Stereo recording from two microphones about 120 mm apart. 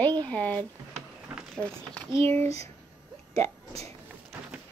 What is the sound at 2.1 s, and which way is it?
Speech, 50° right (ahead or behind).